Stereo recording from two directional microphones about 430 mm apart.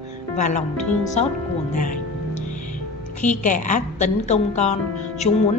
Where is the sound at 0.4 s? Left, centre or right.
Centre.